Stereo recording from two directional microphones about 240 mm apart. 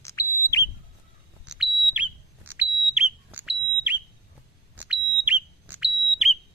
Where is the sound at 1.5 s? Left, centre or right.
Centre.